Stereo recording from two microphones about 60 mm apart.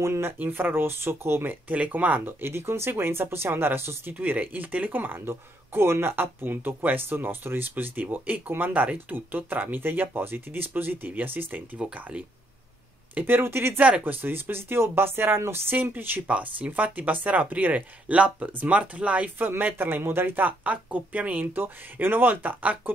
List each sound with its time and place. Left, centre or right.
0.0 s speech: right
0.4 s speech: right
2.4 s speech: right
11.8 s speech: centre
13.1 s speech: right
13.7 s speech: right
15.8 s speech: right
16.3 s speech: right